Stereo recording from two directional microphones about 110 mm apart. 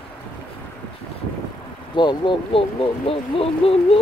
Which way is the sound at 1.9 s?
45° left (ahead or behind).